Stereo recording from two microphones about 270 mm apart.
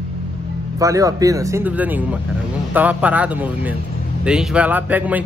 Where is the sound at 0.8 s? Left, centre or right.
Centre.